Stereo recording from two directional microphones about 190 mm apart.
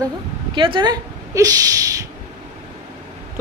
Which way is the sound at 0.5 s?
25° right (ahead or behind).